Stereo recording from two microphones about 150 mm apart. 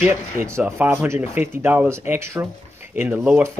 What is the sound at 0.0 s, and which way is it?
Speech, 15° right (ahead or behind).